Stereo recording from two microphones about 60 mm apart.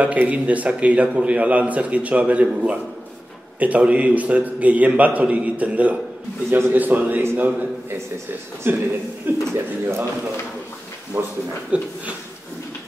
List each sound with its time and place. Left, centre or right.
0.0 s a man's voice: right
8.6 s a man's voice: right
11.7 s a man's voice: right